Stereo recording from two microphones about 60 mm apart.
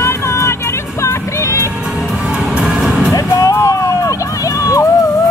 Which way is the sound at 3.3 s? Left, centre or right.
Left.